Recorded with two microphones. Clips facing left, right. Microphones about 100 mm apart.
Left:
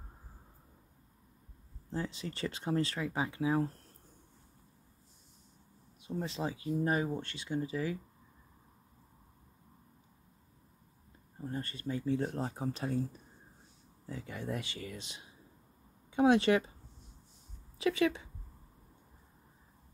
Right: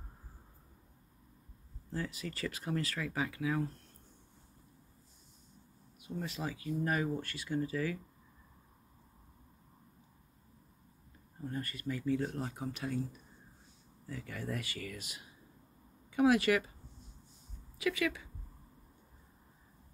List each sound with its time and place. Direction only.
1.9 s speech: 25° left (ahead or behind)
5.9 s speech: 30° left (ahead or behind)
11.3 s speech: 30° left (ahead or behind)
17.7 s speech: 30° left (ahead or behind)